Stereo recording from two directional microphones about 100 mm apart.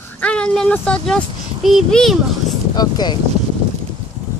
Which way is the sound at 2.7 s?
45° left (ahead or behind).